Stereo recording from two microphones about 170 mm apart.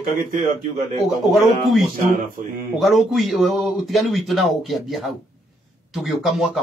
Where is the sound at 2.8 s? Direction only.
Centre (ahead or behind).